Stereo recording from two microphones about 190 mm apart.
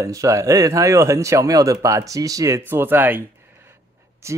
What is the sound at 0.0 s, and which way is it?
Speech, 15° right (ahead or behind).